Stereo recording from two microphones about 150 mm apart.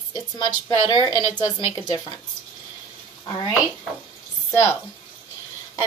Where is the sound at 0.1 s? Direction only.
30° left (ahead or behind).